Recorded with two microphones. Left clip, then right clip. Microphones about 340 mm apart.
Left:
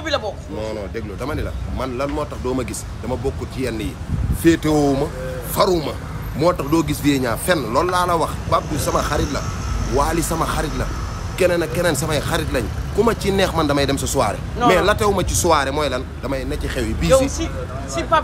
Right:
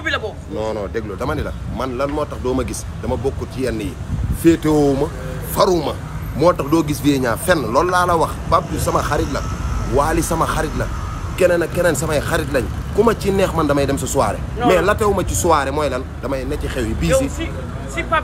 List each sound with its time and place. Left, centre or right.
0.0 s speech: centre